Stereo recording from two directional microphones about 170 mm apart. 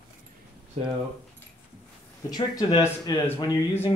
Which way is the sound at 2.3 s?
25° left (ahead or behind).